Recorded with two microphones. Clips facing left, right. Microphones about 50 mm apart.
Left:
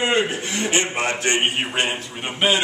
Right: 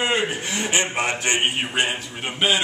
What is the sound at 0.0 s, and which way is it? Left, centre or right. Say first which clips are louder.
Speech: left 2 dB; centre.